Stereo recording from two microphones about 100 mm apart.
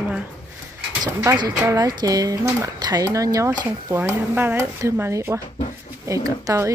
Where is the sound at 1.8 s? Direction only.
40° right (ahead or behind).